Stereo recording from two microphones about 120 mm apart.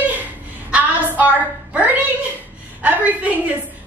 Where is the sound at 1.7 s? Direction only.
15° right (ahead or behind).